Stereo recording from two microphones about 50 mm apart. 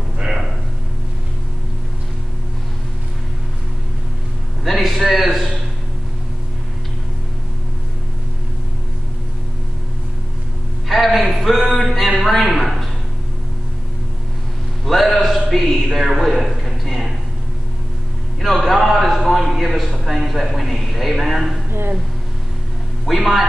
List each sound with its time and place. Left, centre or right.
4.6 s a sound: centre
4.9 s a man's voice: centre
10.9 s a man's voice: centre
14.9 s a man's voice: centre
18.6 s a man's voice: centre
21.6 s speech: right
23.0 s a man's voice: centre